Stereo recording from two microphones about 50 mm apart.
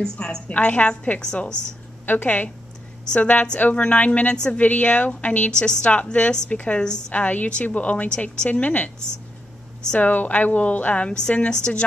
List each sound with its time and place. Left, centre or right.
0.0 s a woman's voice: centre
0.5 s a woman's voice: left
2.0 s a woman's voice: left
5.6 s a woman's voice: centre
9.9 s a woman's voice: left